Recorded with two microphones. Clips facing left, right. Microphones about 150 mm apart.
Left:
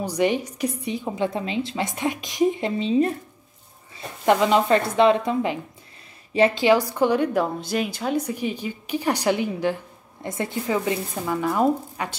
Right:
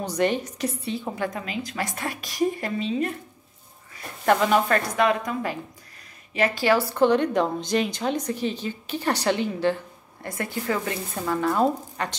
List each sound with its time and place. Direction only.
0.0 s a woman's voice: 10° left (ahead or behind)
10.2 s a woman's voice: 20° left (ahead or behind)